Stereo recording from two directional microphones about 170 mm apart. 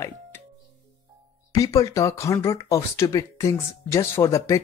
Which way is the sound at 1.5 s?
20° left (ahead or behind).